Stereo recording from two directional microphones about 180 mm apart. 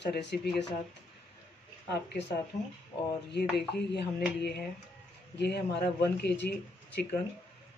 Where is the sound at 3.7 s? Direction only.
65° left (ahead or behind).